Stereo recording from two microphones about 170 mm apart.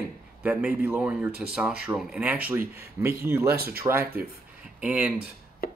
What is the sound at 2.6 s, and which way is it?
Speech, 65° right (ahead or behind).